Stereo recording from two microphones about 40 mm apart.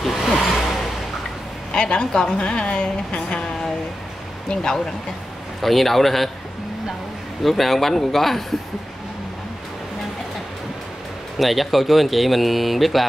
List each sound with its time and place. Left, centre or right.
0.0 s vehicle: centre
1.7 s a woman's voice: left
4.5 s speech: centre
5.6 s speech: centre
7.4 s speech: centre
11.3 s speech: centre